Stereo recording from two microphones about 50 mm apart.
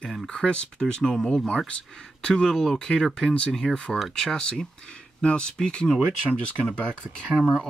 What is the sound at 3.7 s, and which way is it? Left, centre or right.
Speech, left.